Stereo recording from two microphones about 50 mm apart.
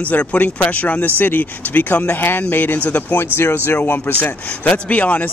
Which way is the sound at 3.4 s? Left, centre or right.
Left.